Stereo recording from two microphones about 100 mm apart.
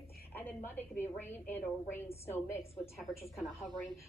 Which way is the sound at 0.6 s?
20° left (ahead or behind).